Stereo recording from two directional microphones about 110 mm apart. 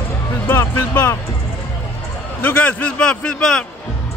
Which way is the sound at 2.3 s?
15° left (ahead or behind).